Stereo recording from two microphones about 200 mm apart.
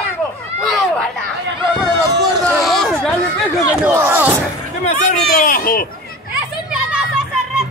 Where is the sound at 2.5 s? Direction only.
Centre (ahead or behind).